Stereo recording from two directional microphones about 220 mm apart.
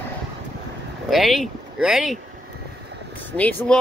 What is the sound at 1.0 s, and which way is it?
Speech, centre (ahead or behind).